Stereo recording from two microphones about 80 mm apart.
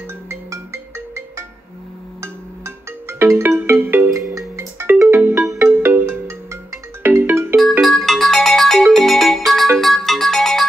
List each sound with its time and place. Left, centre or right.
0.3 s music: right
2.2 s ringtone: right
4.3 s music: right
5.7 s ringtone: right
7.0 s music: right
7.8 s ringtone: centre
9.8 s music: centre